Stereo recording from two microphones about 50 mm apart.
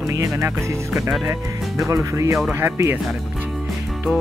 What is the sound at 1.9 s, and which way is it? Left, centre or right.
Speech, right.